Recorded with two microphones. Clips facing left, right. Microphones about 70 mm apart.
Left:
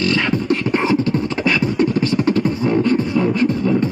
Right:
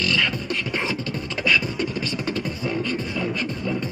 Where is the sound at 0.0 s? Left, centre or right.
Left.